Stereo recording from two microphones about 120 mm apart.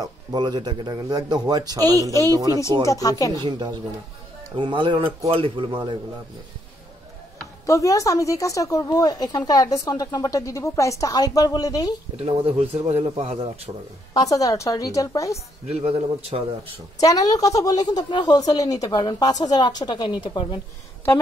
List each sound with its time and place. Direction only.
0.0 s speech: 35° right (ahead or behind)
2.9 s speech: 30° left (ahead or behind)
3.4 s a man's voice: 40° right (ahead or behind)
7.6 s speech: 25° left (ahead or behind)
12.2 s a man's voice: 55° right (ahead or behind)
14.1 s speech: 30° left (ahead or behind)
15.6 s a man's voice: 65° right (ahead or behind)
17.0 s a woman's voice: 30° left (ahead or behind)